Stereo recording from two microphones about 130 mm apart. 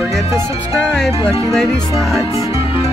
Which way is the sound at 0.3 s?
20° right (ahead or behind).